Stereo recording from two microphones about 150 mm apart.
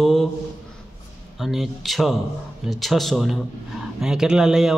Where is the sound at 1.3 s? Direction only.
Centre (ahead or behind).